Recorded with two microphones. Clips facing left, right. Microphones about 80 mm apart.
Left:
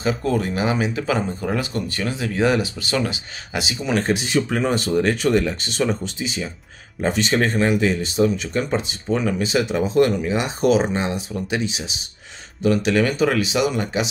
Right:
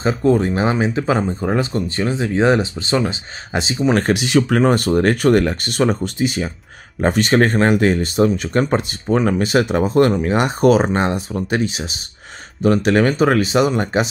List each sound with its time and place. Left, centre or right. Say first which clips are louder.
0.0 s speech: right 6 dB; right
3.9 s speech: right 3 dB; right